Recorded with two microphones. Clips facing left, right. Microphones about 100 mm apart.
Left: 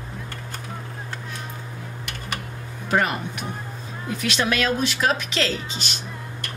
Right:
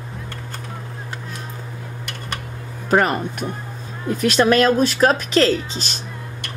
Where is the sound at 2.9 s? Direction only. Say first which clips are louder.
Right 5 dB; 45° right (ahead or behind).